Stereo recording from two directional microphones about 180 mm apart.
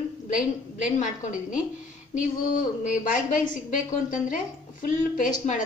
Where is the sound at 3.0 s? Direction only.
45° left (ahead or behind).